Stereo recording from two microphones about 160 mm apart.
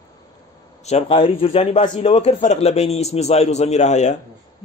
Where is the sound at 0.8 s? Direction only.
40° left (ahead or behind).